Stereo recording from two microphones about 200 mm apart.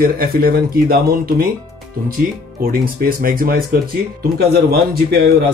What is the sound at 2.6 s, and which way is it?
Speech, 45° right (ahead or behind).